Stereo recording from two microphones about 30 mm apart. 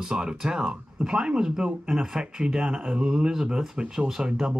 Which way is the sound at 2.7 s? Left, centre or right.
Right.